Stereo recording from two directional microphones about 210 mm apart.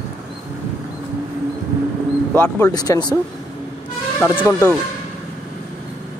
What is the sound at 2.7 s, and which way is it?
Speech, 20° left (ahead or behind).